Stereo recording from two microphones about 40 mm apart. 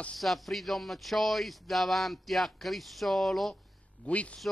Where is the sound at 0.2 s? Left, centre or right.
Centre.